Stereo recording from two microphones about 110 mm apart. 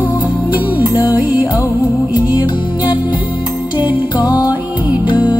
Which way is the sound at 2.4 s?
50° left (ahead or behind).